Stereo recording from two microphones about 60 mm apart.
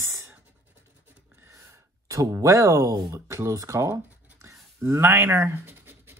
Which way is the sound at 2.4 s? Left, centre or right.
Right.